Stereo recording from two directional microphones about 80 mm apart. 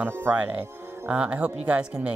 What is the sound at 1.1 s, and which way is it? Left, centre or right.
Speech, centre.